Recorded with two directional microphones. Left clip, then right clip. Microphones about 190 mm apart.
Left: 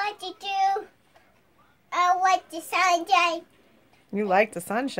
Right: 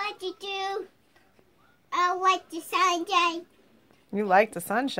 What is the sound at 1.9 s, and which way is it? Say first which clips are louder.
Child singing: left 3 dB; 20° left (ahead or behind).